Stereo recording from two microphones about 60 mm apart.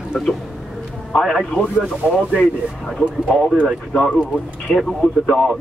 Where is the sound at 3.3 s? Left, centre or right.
Left.